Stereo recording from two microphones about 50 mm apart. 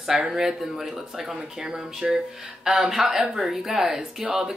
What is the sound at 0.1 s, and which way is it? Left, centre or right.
Speech, right.